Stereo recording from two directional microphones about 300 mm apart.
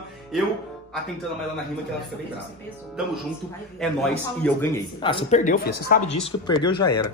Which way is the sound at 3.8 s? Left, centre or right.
Centre.